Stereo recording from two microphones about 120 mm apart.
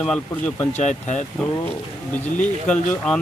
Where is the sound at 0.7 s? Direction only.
70° left (ahead or behind).